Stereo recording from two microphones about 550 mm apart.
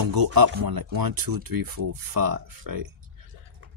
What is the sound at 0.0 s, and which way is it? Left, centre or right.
Speech, right.